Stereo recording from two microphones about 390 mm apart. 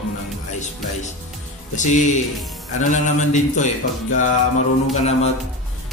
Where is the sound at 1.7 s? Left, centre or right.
Centre.